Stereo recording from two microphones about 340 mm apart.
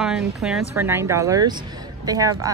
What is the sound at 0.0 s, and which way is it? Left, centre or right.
A woman's voice, centre.